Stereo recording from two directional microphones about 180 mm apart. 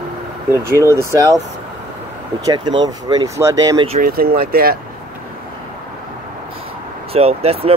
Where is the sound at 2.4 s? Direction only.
25° right (ahead or behind).